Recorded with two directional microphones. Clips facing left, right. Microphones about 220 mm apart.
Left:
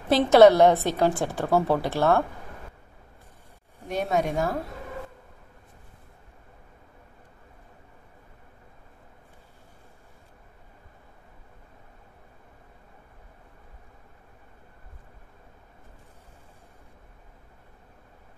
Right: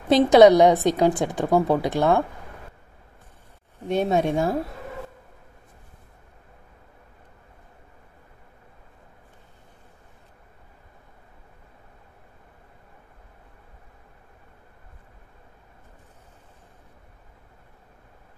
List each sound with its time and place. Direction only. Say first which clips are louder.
0.1 s a woman's voice: right 2 dB; 15° right (ahead or behind)
3.9 s speech: right 4 dB; 25° right (ahead or behind)